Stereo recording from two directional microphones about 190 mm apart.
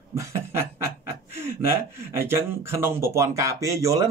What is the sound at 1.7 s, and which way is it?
Speech, 10° right (ahead or behind).